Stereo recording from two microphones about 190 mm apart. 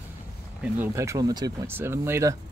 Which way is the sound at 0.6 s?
15° right (ahead or behind).